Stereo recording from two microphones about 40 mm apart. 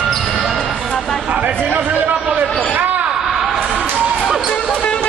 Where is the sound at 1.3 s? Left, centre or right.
Right.